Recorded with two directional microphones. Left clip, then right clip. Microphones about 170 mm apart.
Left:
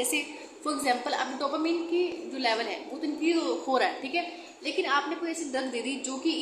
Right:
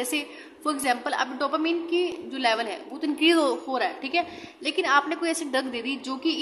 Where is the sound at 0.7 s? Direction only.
20° right (ahead or behind).